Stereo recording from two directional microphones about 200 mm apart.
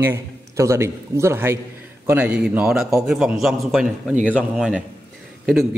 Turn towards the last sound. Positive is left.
turn(degrees=0)  # may be behind; listen again after turning